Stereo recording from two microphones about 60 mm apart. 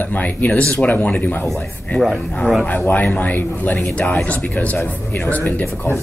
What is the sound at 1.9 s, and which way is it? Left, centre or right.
Speech, left.